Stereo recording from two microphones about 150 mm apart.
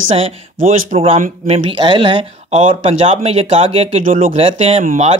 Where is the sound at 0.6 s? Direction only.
55° right (ahead or behind).